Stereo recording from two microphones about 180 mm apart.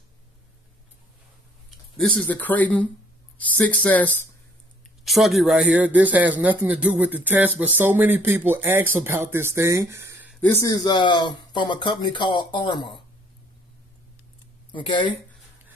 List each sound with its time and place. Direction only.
2.0 s speech: 10° left (ahead or behind); by 10.3 s 15° right (ahead or behind)
10.4 s speech: 15° left (ahead or behind)
14.7 s speech: 25° left (ahead or behind)